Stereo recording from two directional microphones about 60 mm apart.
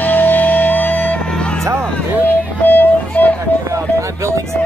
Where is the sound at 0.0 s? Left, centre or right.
Left.